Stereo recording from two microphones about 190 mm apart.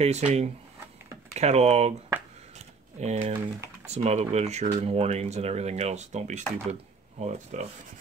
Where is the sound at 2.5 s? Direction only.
35° right (ahead or behind).